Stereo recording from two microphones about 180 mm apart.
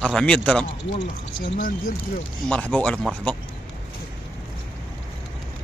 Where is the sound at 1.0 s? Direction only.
90° left.